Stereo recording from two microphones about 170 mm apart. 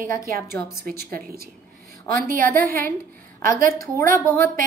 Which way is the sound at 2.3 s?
55° right (ahead or behind).